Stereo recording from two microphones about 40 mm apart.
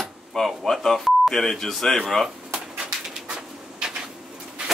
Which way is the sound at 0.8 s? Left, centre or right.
Centre.